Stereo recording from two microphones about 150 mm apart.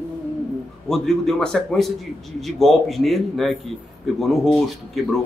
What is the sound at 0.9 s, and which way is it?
A man's voice, centre (ahead or behind).